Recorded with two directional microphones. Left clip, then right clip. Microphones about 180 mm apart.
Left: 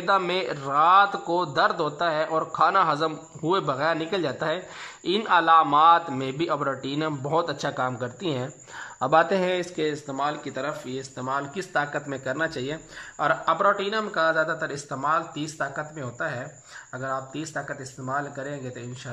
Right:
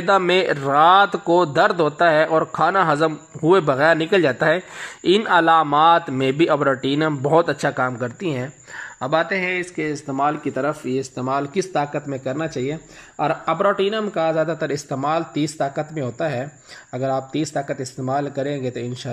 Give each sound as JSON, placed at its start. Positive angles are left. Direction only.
{"t": 0.2, "sound": "a man's voice", "side_deg": -15}
{"t": 9.8, "sound": "a man's voice", "side_deg": -10}